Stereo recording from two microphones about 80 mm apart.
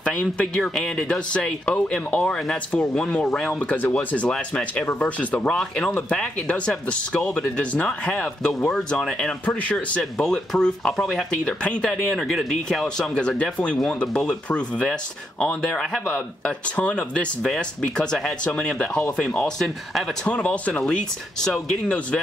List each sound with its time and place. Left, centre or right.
0.0 s speech: centre
10.1 s speech: centre
20.2 s speech: centre